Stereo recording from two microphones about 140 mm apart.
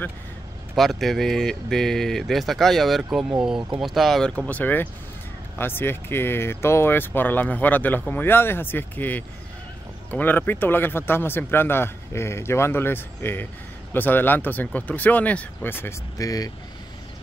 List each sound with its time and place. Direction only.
0.7 s speech: centre (ahead or behind); by 16.5 s 25° left (ahead or behind)